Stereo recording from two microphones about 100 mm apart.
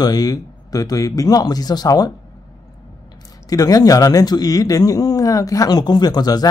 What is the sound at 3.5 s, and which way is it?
Speech, 35° left (ahead or behind).